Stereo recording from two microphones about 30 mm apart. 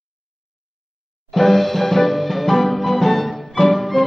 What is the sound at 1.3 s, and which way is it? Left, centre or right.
Music, centre.